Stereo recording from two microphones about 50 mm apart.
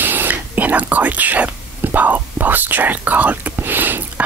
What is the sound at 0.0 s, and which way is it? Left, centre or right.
Whispering, right.